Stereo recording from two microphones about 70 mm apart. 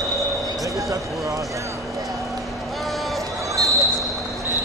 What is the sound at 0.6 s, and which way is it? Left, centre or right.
Basketball bounce, right.